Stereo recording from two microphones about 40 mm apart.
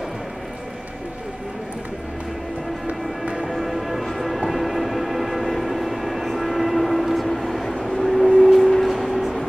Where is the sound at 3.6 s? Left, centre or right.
Centre.